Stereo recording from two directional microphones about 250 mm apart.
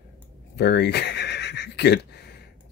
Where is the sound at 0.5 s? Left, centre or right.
Left.